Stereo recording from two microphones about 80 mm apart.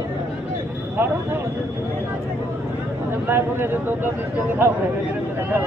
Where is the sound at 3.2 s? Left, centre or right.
Right.